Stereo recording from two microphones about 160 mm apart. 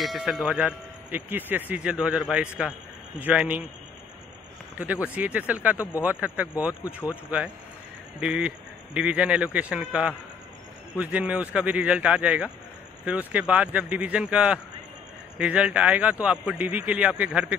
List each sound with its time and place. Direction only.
0.0 s speech: centre (ahead or behind)
5.0 s speech: 10° right (ahead or behind)
6.7 s speech: 20° left (ahead or behind)
7.1 s speech: 10° right (ahead or behind)